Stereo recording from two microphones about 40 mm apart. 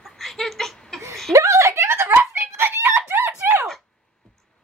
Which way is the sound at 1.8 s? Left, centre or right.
Right.